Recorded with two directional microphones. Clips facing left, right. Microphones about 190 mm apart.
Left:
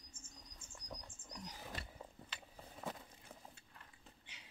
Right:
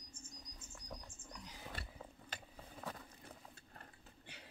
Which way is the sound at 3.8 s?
60° right (ahead or behind).